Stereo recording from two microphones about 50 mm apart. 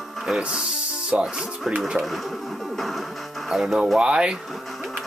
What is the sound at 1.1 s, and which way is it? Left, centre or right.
Speech, right.